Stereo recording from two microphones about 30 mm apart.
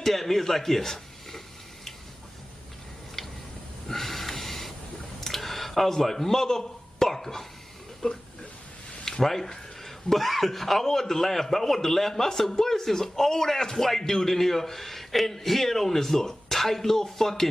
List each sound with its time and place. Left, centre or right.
0.0 s a man's voice: centre
3.9 s a sound: centre
8.0 s speech: left
9.2 s a man's voice: centre